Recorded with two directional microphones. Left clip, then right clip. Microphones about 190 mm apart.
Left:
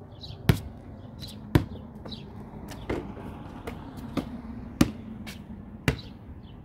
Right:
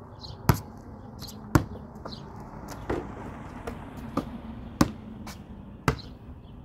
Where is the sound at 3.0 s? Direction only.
20° right (ahead or behind).